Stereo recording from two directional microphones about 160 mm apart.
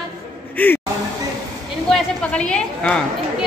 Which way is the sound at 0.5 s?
10° left (ahead or behind).